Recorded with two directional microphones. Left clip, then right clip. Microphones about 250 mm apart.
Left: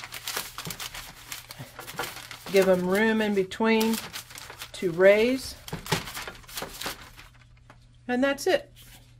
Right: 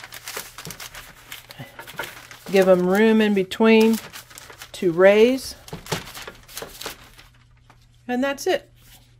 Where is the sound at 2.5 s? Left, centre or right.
Right.